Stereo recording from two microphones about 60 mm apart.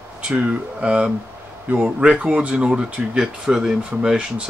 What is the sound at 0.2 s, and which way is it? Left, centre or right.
Speech, centre.